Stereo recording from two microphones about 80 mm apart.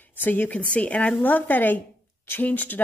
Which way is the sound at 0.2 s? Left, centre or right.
Left.